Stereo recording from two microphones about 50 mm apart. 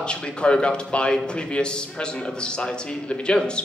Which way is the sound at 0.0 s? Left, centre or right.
Centre.